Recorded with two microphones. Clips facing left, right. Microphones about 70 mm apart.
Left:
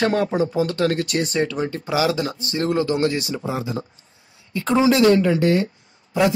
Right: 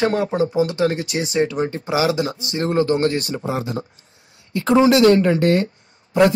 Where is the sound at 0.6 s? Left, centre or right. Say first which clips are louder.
Right 2 dB; centre.